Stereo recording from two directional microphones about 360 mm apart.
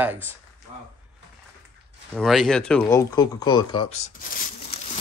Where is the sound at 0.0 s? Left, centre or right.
Centre.